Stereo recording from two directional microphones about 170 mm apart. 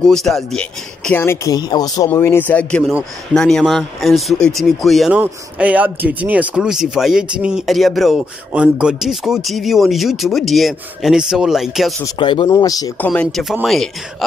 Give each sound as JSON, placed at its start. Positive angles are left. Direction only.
{"t": 0.0, "sound": "speech", "side_deg": 0}
{"t": 12.0, "sound": "speech", "side_deg": 25}
{"t": 12.9, "sound": "speech", "side_deg": 10}